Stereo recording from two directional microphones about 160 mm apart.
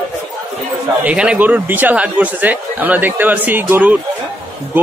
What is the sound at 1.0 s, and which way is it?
A man's voice, 5° right (ahead or behind).